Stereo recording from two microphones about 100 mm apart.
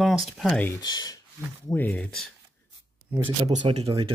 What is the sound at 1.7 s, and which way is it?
Speech, 15° left (ahead or behind).